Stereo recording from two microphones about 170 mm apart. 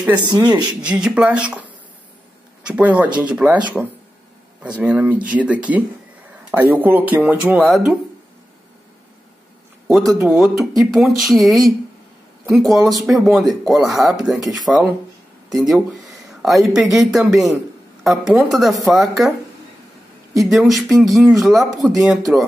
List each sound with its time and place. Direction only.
0.3 s speech: 25° right (ahead or behind)
0.7 s a woman's voice: 5° right (ahead or behind)
9.8 s a woman's voice: centre (ahead or behind)
20.3 s a woman's voice: centre (ahead or behind)